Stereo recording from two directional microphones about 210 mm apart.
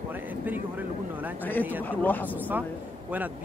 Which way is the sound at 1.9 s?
10° left (ahead or behind).